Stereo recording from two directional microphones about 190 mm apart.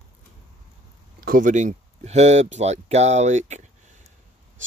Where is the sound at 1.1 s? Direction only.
45° right (ahead or behind).